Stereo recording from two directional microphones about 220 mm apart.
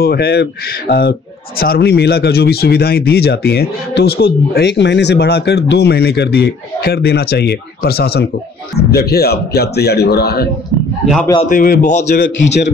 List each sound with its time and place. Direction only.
0.0 s speech: 45° left (ahead or behind)